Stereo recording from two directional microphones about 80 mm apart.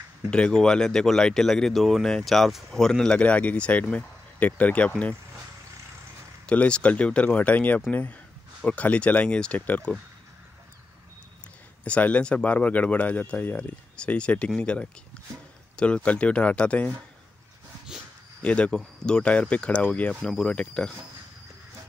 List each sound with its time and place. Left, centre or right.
0.3 s speech: centre
6.4 s speech: centre
11.8 s speech: centre
18.4 s speech: centre